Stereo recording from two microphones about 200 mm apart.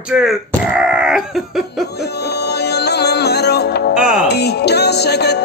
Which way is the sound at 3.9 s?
5° right (ahead or behind).